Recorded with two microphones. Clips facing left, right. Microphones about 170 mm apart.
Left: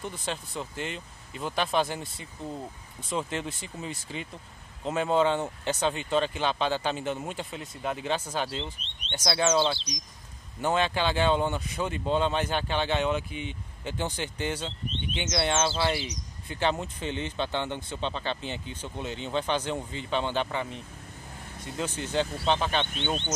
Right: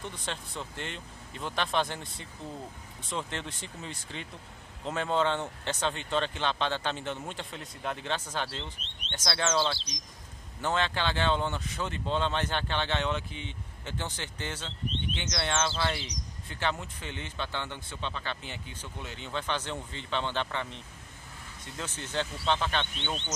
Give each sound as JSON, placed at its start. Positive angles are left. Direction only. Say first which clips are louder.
{"t": 0.0, "sound": "speech", "louder": "left 4 dB", "side_deg": 5}
{"t": 22.9, "sound": "speech", "louder": "left 5 dB", "side_deg": 35}